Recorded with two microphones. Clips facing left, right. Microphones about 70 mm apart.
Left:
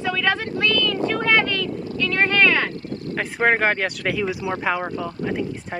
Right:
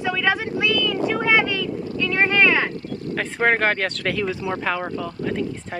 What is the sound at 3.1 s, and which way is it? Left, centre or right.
Speech, centre.